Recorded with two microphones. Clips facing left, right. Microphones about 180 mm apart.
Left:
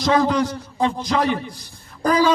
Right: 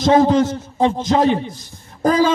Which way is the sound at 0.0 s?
25° right (ahead or behind).